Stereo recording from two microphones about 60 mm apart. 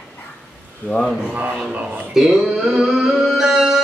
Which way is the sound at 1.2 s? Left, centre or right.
Centre.